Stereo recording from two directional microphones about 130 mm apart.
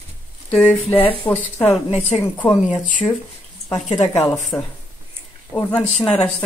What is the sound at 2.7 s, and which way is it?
Speech, 75° left (ahead or behind).